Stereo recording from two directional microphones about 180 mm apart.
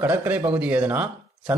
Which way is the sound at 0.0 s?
10° right (ahead or behind).